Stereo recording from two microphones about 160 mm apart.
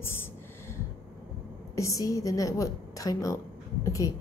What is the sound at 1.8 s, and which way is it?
A woman's voice, 20° left (ahead or behind).